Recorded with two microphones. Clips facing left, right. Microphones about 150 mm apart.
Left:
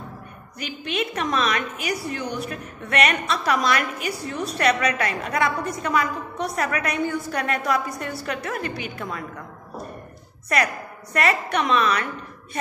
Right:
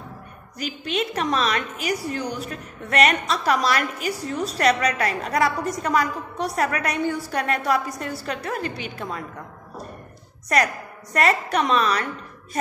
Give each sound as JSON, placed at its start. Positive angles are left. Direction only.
{"t": 0.6, "sound": "a woman's voice", "side_deg": -35}
{"t": 11.1, "sound": "a woman's voice", "side_deg": -35}